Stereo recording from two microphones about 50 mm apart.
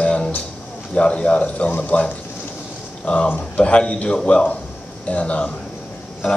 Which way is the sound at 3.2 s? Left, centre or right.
Left.